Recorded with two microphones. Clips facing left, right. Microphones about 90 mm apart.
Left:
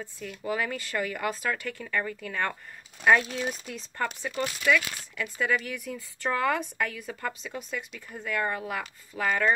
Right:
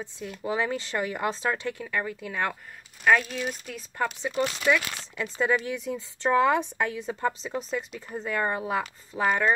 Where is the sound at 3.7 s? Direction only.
5° right (ahead or behind).